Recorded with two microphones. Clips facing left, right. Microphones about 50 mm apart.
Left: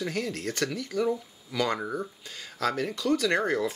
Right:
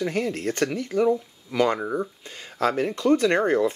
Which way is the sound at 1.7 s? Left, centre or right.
Centre.